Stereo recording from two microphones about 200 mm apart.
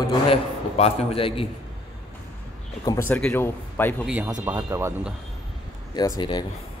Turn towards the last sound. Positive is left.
turn(degrees=20)  # may be behind; listen again after turning